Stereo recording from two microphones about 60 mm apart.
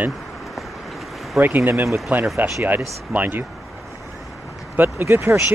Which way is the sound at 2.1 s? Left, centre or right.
Right.